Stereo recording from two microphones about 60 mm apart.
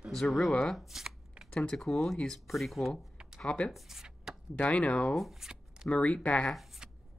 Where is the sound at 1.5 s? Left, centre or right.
Centre.